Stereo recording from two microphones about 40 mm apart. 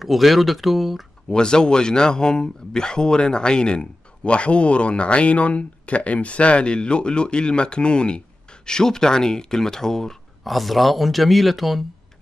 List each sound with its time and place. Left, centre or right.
0.0 s speech: centre
1.3 s speech: left
10.4 s speech: centre